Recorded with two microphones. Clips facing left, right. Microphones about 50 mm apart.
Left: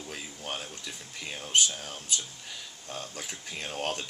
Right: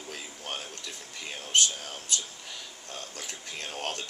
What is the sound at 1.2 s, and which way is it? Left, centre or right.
Speech, centre.